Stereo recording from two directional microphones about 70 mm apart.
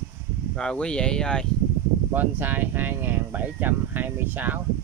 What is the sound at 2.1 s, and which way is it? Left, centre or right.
Speech, right.